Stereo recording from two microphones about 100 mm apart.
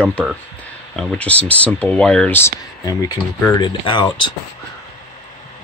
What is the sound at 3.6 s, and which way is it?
Speech, 50° left (ahead or behind).